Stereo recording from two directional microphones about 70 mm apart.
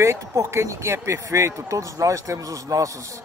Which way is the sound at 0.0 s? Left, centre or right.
Right.